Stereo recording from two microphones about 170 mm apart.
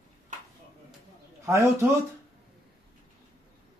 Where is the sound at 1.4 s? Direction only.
15° right (ahead or behind).